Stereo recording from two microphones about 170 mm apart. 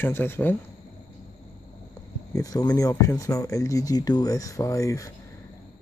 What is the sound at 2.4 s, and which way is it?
Speech, 20° left (ahead or behind).